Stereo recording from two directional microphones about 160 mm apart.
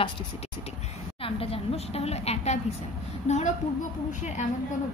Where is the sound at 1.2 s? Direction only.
35° left (ahead or behind).